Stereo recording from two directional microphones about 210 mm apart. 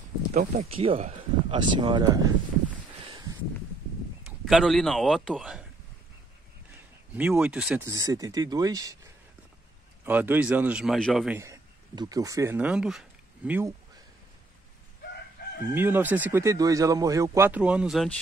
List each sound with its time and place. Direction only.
0.3 s speech: 35° right (ahead or behind)
4.5 s a man's voice: centre (ahead or behind)
7.2 s speech: 10° right (ahead or behind)
7.9 s speech: 15° right (ahead or behind); by 11.3 s centre (ahead or behind)
11.3 s speech: 15° right (ahead or behind)
15.7 s speech: 10° right (ahead or behind)